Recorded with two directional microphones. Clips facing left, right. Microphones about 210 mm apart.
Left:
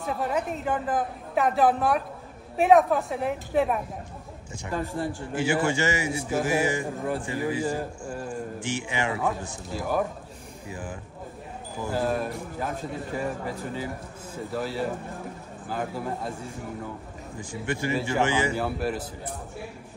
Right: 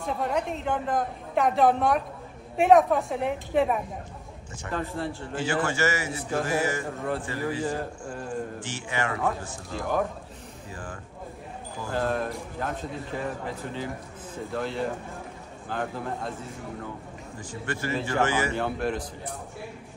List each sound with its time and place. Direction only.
0.0 s a woman's voice: 5° left (ahead or behind)
4.6 s a man's voice: 15° left (ahead or behind)
9.2 s a man's voice: 5° left (ahead or behind)
14.5 s a woman's voice: 5° left (ahead or behind)
18.6 s a woman's voice: 5° left (ahead or behind)